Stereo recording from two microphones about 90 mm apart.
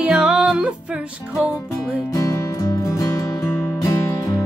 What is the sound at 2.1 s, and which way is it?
Music, 40° left (ahead or behind).